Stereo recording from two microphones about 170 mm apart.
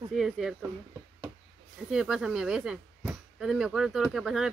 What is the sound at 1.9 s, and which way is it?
Speech, 5° right (ahead or behind).